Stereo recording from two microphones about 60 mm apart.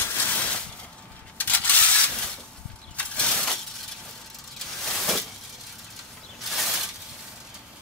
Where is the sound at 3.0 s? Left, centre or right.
Centre.